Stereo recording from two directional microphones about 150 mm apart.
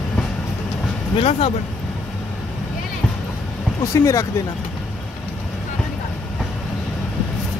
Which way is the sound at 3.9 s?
20° left (ahead or behind).